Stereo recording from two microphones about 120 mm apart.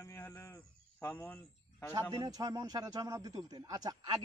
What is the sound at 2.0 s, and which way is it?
A man's voice, 30° right (ahead or behind).